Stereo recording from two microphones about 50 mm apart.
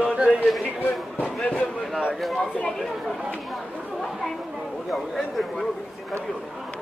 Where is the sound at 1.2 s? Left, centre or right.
Left.